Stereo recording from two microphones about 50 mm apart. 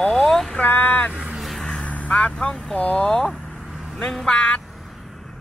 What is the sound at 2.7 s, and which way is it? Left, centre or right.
Speech, left.